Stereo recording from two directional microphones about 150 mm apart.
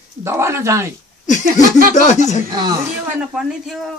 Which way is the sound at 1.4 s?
70° right (ahead or behind).